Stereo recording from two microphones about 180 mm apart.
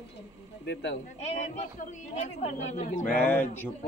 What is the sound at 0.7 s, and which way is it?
Speech, 75° left (ahead or behind).